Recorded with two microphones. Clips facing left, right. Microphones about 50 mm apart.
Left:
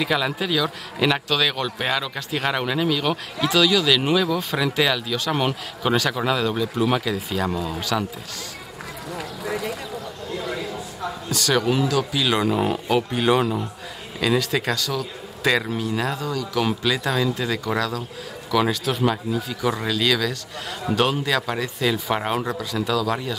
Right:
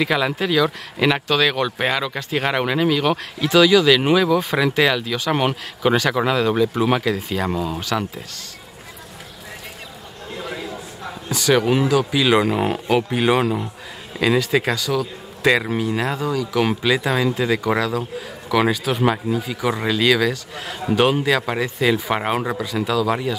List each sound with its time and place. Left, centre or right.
0.0 s a man's voice: centre
5.8 s a man's voice: centre
11.2 s a man's voice: centre